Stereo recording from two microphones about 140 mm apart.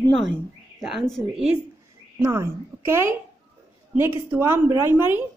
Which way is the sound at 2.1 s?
20° right (ahead or behind).